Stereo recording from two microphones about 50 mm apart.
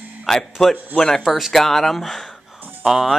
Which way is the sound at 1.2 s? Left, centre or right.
Centre.